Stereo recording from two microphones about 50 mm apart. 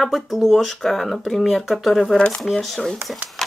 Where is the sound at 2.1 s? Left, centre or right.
Centre.